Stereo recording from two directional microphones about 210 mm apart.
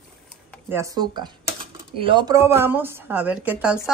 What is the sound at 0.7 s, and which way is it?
Speech, 15° right (ahead or behind).